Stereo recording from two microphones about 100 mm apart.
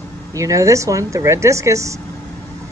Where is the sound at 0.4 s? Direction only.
35° right (ahead or behind).